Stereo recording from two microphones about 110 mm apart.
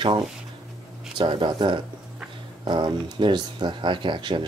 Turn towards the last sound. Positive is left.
turn(degrees=-45)  # may be behind; listen again after turning